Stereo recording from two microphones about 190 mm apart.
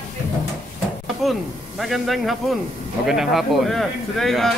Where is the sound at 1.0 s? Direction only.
Centre (ahead or behind).